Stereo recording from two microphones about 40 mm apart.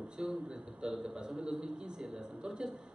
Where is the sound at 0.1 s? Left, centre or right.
Right.